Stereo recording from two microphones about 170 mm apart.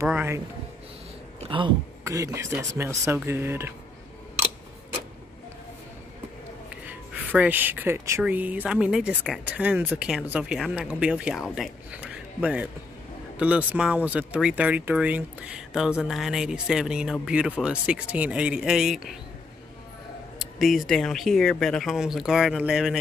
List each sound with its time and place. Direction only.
0.0 s a man's voice: 15° right (ahead or behind)
1.4 s a sound: 30° right (ahead or behind)
2.0 s speech: 15° right (ahead or behind)
6.9 s speech: 10° right (ahead or behind)
13.4 s speech: 10° right (ahead or behind)
20.3 s speech: centre (ahead or behind)